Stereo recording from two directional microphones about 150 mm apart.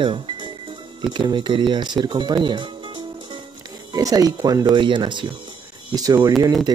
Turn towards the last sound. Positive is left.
turn(degrees=-30)  # may be behind; listen again after turning